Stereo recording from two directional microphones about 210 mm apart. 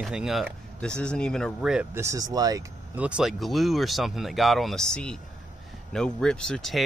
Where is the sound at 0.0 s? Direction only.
Centre (ahead or behind).